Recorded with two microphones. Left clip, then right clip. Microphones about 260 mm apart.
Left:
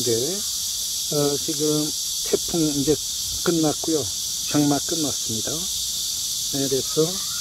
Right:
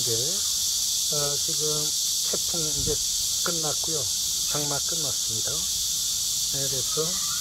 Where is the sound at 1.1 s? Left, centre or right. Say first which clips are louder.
Left 3 dB; left.